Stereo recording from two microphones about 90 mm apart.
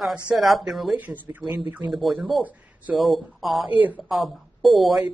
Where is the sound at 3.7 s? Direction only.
20° right (ahead or behind).